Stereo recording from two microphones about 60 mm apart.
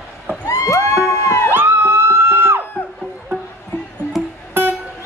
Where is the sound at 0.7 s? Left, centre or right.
Left.